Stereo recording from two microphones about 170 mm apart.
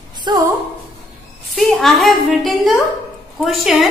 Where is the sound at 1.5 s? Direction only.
Centre (ahead or behind).